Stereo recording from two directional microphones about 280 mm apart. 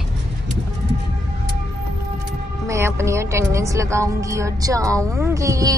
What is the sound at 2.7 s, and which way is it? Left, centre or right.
A woman's voice, centre.